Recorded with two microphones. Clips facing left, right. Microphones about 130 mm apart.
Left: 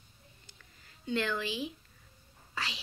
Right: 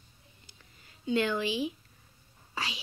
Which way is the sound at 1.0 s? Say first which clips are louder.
Right 4 dB; 15° right (ahead or behind).